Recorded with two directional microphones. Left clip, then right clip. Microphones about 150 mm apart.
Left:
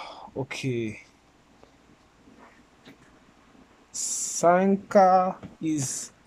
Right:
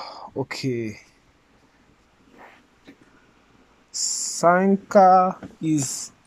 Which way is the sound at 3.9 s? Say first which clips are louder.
Right 5 dB; 20° left (ahead or behind).